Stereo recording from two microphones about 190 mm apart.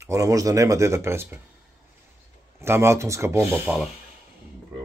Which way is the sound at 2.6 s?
15° right (ahead or behind).